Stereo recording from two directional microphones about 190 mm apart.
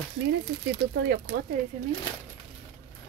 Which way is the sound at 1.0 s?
60° right (ahead or behind).